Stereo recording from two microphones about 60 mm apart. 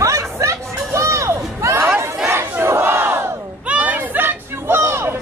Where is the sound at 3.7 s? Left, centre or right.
Right.